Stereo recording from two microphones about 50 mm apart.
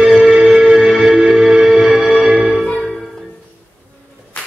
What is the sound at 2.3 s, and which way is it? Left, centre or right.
Church bell, centre.